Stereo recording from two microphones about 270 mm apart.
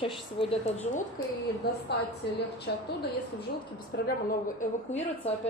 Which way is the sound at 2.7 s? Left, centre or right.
Left.